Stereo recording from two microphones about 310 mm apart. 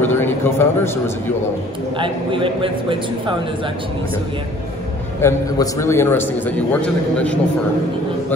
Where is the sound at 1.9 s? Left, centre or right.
Centre.